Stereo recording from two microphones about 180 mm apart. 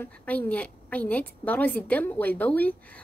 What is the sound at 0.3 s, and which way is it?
A woman's voice, 5° left (ahead or behind).